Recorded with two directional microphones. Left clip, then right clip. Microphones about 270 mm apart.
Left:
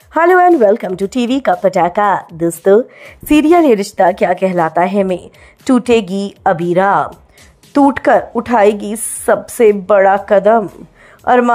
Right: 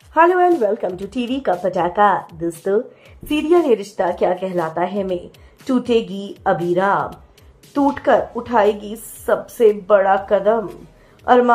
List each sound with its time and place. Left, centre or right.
0.1 s a woman's voice: left